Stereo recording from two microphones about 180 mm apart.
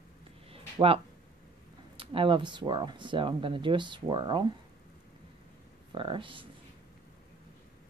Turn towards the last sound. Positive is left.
turn(degrees=-30)  # may be behind; listen again after turning